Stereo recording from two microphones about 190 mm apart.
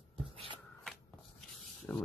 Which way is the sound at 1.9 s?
10° left (ahead or behind).